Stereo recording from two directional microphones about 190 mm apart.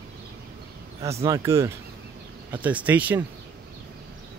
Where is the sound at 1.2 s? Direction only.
15° right (ahead or behind).